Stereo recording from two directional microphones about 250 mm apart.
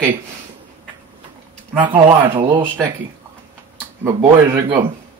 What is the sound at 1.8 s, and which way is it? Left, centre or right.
Speech, centre.